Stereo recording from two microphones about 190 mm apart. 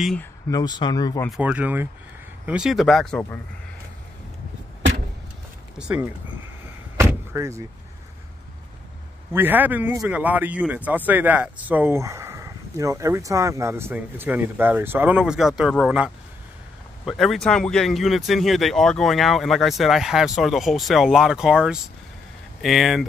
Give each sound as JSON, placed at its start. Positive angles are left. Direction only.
{"t": 0.0, "sound": "speech", "side_deg": 5}
{"t": 0.5, "sound": "speech", "side_deg": 20}
{"t": 1.3, "sound": "speech", "side_deg": -5}
{"t": 5.8, "sound": "speech", "side_deg": -5}
{"t": 7.0, "sound": "door", "side_deg": -15}
{"t": 9.3, "sound": "speech", "side_deg": -10}